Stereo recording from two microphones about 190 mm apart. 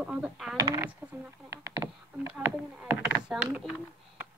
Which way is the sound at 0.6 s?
15° right (ahead or behind).